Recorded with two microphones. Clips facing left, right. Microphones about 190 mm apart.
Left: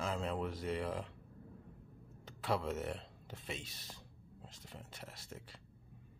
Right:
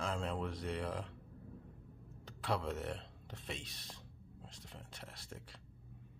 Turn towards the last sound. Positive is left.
turn(degrees=0)  # may be behind; listen again after turning